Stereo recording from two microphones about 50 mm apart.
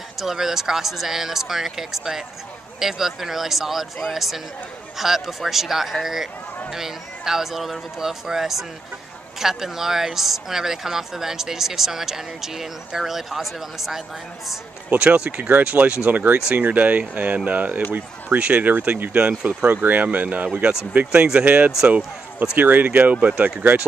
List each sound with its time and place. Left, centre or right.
0.2 s a woman's voice: centre
14.9 s speech: right